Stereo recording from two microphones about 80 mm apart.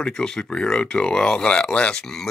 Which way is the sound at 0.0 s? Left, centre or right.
Centre.